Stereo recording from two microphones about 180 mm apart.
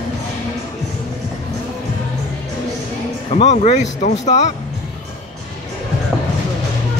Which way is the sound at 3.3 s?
40° left (ahead or behind).